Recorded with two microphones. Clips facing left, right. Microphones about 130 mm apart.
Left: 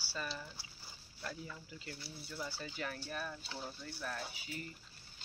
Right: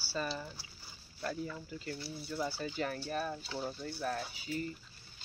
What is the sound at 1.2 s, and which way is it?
Speech, 45° right (ahead or behind).